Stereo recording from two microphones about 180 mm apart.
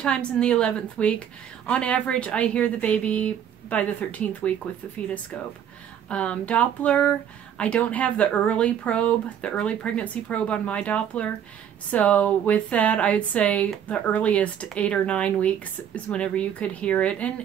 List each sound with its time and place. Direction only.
0.0 s a woman's voice: 5° left (ahead or behind)
6.0 s speech: 5° left (ahead or behind)